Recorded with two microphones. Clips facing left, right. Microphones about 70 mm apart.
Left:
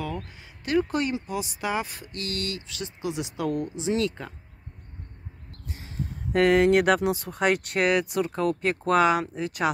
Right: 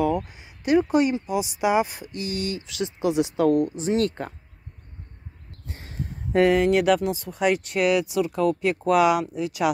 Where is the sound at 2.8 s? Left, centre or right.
Right.